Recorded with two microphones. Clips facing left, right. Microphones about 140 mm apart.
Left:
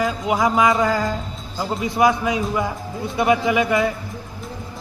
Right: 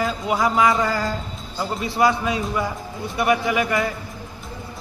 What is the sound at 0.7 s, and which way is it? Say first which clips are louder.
Music: left 2 dB; centre (ahead or behind).